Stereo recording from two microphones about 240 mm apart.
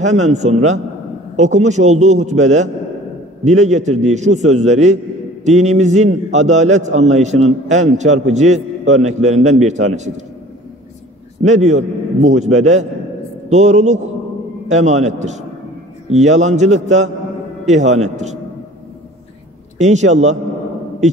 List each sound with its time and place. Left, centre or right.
0.0 s a man's voice: right
11.4 s a man's voice: right
19.8 s a man's voice: right